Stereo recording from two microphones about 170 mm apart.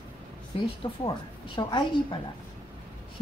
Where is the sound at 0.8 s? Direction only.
30° left (ahead or behind).